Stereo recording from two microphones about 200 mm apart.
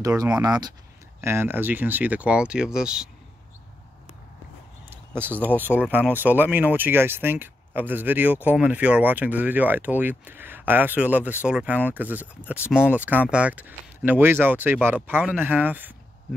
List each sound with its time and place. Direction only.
0.4 s speech: 20° right (ahead or behind); by 3.1 s 5° right (ahead or behind)
4.8 s a sound: 10° right (ahead or behind)
5.6 s speech: 10° right (ahead or behind)